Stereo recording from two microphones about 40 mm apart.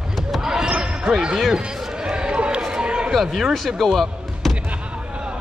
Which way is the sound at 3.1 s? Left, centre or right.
Centre.